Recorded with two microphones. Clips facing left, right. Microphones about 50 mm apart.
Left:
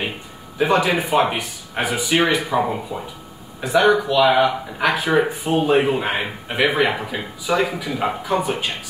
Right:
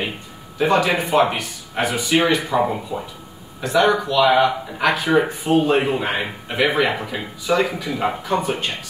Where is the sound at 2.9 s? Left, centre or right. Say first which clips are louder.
Right 1 dB; centre.